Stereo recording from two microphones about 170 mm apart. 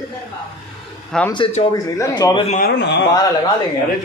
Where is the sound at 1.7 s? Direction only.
25° left (ahead or behind).